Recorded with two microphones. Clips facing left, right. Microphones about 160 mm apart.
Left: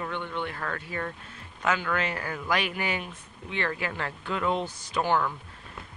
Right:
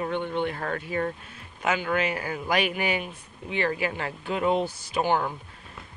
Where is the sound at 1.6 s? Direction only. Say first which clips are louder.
Right 2 dB; 15° right (ahead or behind).